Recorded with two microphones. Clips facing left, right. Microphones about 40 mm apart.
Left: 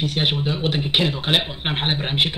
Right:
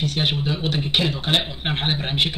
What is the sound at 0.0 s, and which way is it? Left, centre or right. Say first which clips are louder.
Speech: left 1 dB; centre.